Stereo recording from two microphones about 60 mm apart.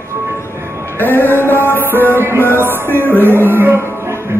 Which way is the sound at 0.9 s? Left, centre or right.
Left.